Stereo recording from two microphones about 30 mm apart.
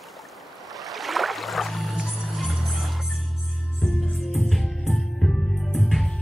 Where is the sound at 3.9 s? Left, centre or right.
Centre.